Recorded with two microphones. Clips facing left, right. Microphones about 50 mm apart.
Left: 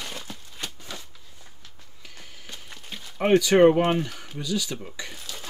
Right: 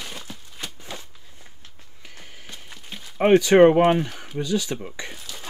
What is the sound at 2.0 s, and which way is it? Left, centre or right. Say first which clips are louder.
Walk: right 1 dB; right.